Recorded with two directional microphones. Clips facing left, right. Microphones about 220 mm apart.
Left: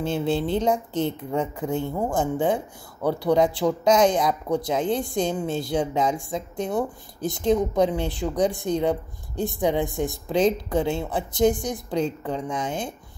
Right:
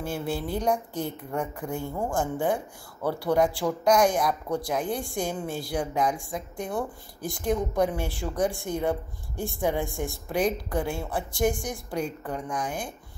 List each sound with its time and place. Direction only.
0.0 s a woman's voice: 20° left (ahead or behind)